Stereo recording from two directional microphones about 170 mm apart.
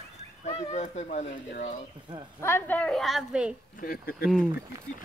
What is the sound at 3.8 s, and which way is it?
Speech, 60° left (ahead or behind).